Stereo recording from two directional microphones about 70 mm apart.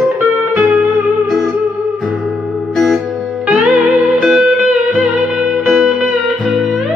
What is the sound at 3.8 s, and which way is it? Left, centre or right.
Music, centre.